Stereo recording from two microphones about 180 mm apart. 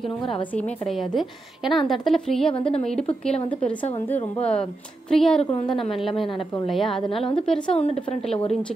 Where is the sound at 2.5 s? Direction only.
30° left (ahead or behind).